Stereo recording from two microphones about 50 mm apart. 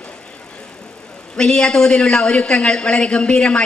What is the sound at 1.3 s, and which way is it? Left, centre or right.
A man's voice, centre.